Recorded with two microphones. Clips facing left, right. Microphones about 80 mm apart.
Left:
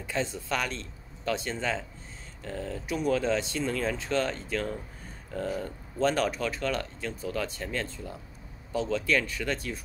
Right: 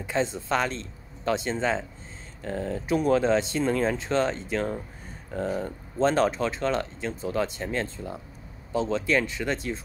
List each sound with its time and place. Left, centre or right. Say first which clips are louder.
0.0 s speech: right 5 dB; right